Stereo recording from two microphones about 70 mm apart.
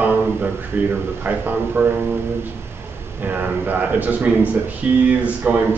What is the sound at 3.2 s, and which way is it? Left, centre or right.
A man's voice, right.